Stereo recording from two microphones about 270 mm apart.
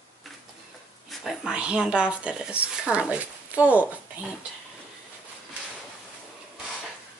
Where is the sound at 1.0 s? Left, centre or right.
Centre.